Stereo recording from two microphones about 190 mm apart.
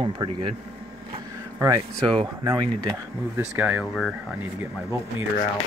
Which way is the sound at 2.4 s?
20° right (ahead or behind).